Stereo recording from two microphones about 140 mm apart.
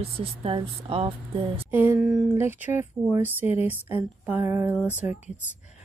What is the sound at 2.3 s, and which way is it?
Speech, 15° right (ahead or behind).